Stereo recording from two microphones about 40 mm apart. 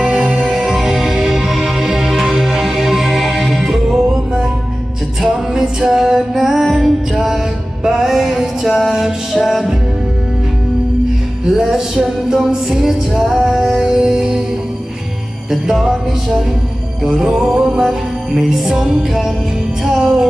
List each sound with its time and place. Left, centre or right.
0.4 s music: centre
5.5 s music: centre
7.8 s music: centre
11.4 s music: centre
15.7 s music: centre